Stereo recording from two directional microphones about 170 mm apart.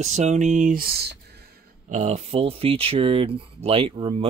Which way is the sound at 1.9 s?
40° right (ahead or behind).